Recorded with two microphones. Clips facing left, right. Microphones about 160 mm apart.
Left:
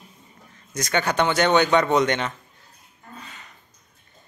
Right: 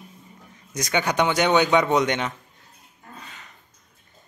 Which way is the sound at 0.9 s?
15° right (ahead or behind).